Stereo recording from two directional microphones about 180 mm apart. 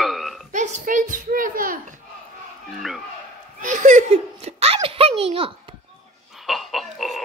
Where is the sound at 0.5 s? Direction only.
45° right (ahead or behind).